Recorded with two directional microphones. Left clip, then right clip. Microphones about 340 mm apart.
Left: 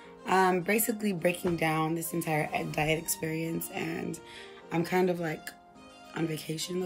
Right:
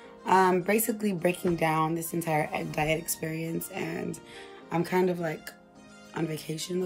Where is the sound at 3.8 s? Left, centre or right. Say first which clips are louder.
Right 1 dB; centre.